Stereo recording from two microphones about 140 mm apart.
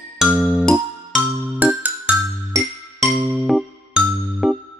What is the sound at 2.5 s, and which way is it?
Music, 20° right (ahead or behind).